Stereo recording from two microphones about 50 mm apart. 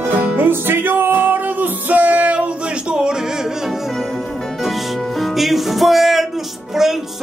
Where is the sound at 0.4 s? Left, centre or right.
Right.